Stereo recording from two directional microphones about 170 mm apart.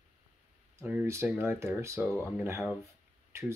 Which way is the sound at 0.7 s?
15° right (ahead or behind).